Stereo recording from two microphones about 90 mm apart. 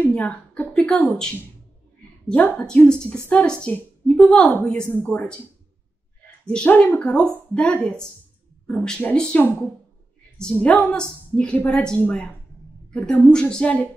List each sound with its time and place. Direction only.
0.0 s a sound: 15° left (ahead or behind)
2.2 s a woman's voice: 10° left (ahead or behind)
6.4 s a woman's voice: 10° left (ahead or behind)
10.4 s a woman's voice: 15° left (ahead or behind)